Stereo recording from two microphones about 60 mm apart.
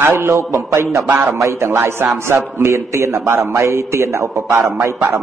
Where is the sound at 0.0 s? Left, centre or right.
Right.